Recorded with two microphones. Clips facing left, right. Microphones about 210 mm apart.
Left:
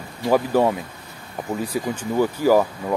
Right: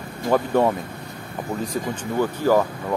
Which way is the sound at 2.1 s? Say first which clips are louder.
Left 2 dB; 10° left (ahead or behind).